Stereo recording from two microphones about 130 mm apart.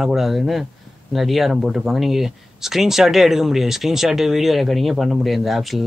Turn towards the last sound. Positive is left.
turn(degrees=0)  # may be behind; listen again after turning